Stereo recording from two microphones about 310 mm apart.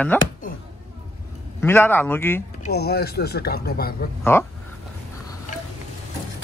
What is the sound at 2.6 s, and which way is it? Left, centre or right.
Speech, left.